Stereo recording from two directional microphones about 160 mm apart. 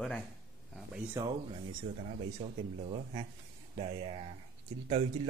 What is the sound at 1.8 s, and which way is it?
Speech, 45° right (ahead or behind).